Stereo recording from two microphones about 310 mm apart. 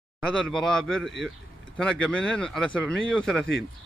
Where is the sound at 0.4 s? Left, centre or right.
Centre.